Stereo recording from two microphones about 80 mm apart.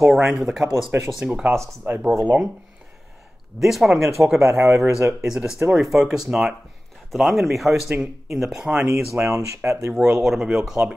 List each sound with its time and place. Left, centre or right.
0.0 s speech: centre
1.8 s speech: right
3.5 s speech: centre
4.6 s speech: right
5.2 s speech: centre
8.9 s speech: right
10.0 s speech: centre